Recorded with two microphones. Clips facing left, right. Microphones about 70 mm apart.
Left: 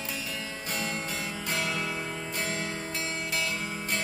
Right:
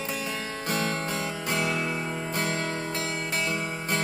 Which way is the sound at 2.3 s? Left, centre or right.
Right.